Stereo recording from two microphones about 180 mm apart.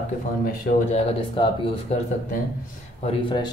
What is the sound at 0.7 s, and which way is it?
Speech, 60° left (ahead or behind).